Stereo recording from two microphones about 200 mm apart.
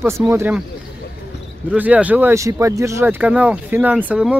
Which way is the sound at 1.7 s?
5° right (ahead or behind).